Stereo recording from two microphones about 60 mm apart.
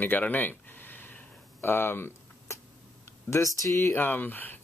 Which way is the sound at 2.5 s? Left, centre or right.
Left.